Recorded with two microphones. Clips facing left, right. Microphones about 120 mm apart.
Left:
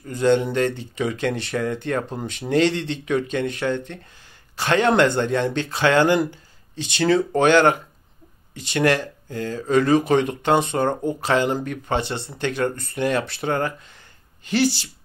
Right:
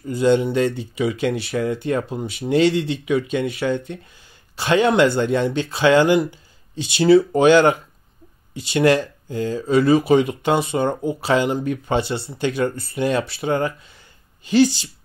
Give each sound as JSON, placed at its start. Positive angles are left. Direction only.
{"t": 0.0, "sound": "speech", "side_deg": -15}